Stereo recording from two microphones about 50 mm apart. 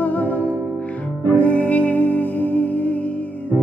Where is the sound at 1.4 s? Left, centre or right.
Left.